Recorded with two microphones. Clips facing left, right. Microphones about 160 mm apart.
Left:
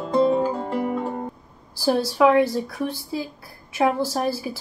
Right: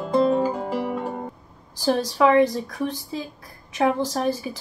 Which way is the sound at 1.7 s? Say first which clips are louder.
Left 1 dB; 10° left (ahead or behind).